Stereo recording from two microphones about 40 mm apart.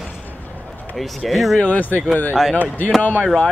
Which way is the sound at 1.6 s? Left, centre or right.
Left.